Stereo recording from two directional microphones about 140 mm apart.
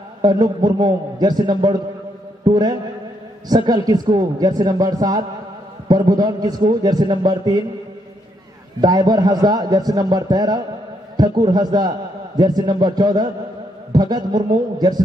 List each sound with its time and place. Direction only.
0.2 s a man's voice: 30° right (ahead or behind)
8.8 s a man's voice: 30° right (ahead or behind)